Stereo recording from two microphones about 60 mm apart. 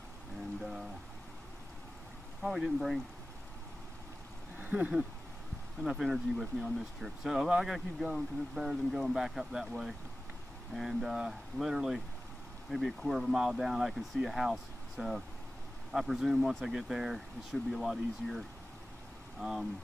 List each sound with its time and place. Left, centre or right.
0.6 s a sound: centre
2.4 s speech: centre
4.6 s speech: right
5.9 s speech: centre
19.4 s speech: centre